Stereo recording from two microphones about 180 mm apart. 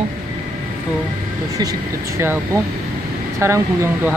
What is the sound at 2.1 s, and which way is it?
Speech, 15° right (ahead or behind).